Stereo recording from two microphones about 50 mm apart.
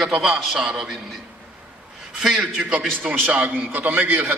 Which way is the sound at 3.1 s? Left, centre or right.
Right.